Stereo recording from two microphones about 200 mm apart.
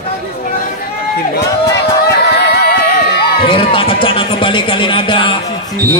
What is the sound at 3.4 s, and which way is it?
Speech, 25° left (ahead or behind).